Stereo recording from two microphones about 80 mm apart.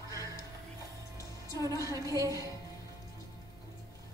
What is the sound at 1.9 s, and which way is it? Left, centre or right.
Speech, right.